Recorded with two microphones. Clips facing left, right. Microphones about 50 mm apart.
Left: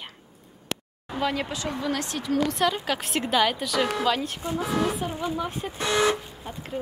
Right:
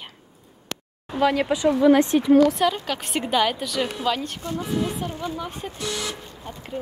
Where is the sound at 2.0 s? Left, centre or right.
Right.